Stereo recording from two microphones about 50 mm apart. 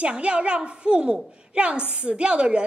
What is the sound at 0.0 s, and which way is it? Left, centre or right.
A woman's voice, right.